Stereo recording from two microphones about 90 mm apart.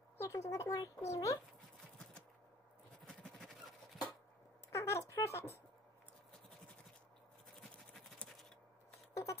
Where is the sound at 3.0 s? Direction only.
5° left (ahead or behind).